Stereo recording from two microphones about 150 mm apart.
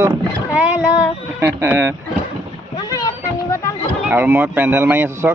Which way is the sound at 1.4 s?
15° right (ahead or behind).